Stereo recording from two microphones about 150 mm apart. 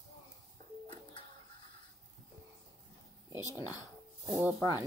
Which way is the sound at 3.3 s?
20° right (ahead or behind).